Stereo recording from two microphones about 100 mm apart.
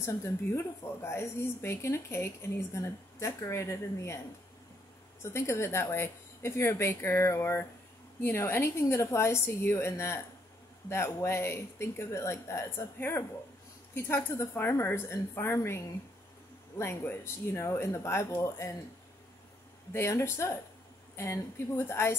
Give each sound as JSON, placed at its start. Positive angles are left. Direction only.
{"t": 0.0, "sound": "speech", "side_deg": 30}
{"t": 5.2, "sound": "speech", "side_deg": 25}
{"t": 19.9, "sound": "speech", "side_deg": 25}